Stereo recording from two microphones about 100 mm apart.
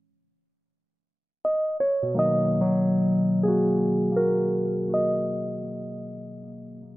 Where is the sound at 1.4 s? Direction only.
Centre (ahead or behind).